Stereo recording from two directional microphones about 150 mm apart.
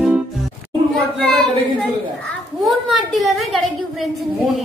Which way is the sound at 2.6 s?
Centre (ahead or behind).